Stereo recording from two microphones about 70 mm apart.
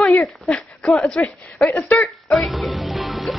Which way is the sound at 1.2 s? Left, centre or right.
Left.